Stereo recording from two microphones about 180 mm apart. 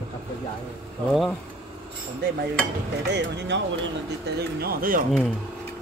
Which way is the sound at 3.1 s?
75° right (ahead or behind).